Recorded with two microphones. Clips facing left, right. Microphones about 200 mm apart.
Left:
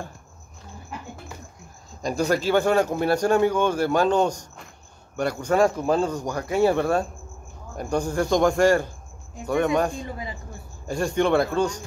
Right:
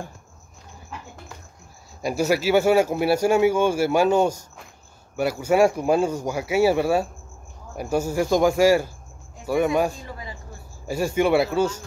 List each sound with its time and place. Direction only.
2.0 s speech: 10° right (ahead or behind)
10.0 s a man's voice: 20° left (ahead or behind)
10.9 s a man's voice: 5° right (ahead or behind)